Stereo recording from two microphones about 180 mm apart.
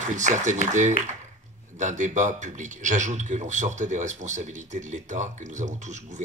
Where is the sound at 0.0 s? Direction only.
45° right (ahead or behind).